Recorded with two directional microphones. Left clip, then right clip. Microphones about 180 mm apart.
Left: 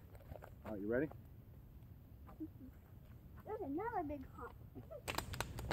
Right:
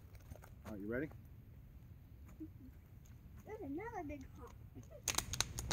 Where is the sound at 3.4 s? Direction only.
5° right (ahead or behind).